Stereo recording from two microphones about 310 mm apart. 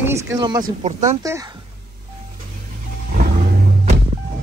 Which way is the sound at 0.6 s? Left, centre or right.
Right.